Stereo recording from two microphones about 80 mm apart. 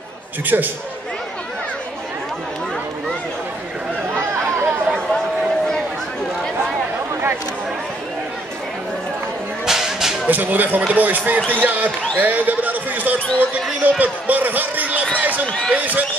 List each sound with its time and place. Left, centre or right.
0.5 s speech: right
4.2 s chatter: right
4.6 s chatter: centre
9.7 s music: centre
10.2 s speech: right
15.1 s a sound: centre
15.4 s speech: centre
15.7 s speech: right